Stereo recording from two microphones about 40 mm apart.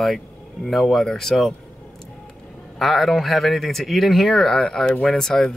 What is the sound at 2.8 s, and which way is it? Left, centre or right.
Speech, centre.